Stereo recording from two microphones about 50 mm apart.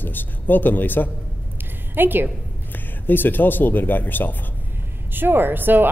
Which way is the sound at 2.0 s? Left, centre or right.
Right.